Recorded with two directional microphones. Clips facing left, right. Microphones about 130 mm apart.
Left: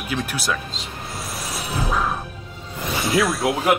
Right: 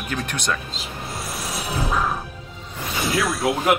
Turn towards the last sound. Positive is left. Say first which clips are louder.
# left 1 dB
turn(degrees=0)  # may be behind; listen again after turning